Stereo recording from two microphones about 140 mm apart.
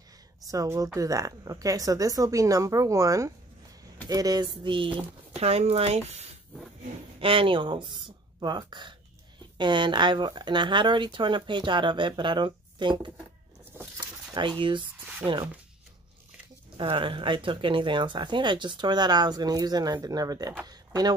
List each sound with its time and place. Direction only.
0.5 s a woman's voice: 25° right (ahead or behind)
5.3 s speech: 50° right (ahead or behind)
14.3 s speech: 35° right (ahead or behind)
16.7 s speech: 40° right (ahead or behind)
20.6 s a sound: 30° right (ahead or behind)